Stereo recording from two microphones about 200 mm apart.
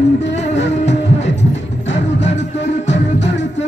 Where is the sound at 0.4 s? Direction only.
60° left (ahead or behind).